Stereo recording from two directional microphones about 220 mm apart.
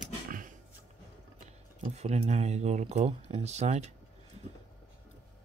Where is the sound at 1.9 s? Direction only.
30° right (ahead or behind).